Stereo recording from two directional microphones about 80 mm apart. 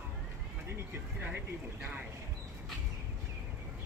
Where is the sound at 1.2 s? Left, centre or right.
Right.